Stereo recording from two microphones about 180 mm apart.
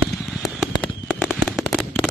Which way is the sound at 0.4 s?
Centre (ahead or behind).